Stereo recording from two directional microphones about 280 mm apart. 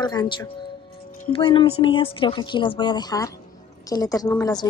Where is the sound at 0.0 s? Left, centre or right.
Centre.